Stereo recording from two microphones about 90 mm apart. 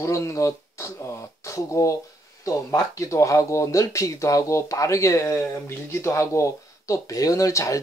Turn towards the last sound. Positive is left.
turn(degrees=35)  # may be behind; listen again after turning